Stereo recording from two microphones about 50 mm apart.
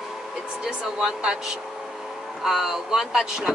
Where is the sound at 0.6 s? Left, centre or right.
Centre.